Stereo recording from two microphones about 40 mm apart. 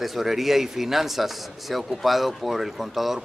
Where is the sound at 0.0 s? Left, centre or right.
Centre.